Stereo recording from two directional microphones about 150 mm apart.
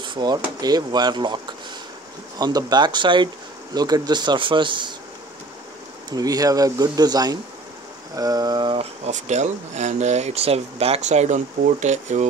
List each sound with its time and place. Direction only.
0.0 s drawer open or close: 30° right (ahead or behind)
0.6 s speech: 25° right (ahead or behind)
6.0 s speech: 25° right (ahead or behind)
9.0 s speech: 50° right (ahead or behind)